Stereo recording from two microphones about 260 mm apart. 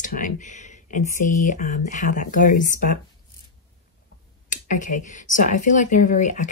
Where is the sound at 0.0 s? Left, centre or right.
Left.